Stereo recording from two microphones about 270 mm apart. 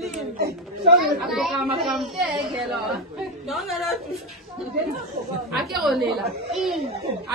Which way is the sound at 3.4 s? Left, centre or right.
Centre.